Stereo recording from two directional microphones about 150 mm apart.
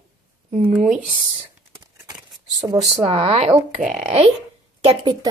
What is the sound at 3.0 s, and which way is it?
Speech, 45° right (ahead or behind).